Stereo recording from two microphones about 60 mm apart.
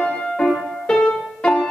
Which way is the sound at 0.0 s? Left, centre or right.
Centre.